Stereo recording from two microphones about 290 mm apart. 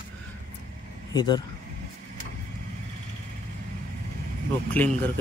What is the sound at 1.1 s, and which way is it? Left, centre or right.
Speech, centre.